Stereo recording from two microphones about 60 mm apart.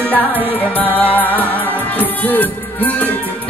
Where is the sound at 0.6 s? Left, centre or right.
Left.